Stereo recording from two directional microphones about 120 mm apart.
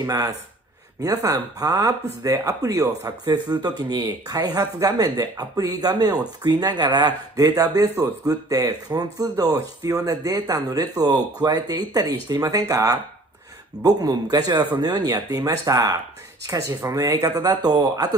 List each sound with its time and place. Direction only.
0.0 s speech: 30° right (ahead or behind)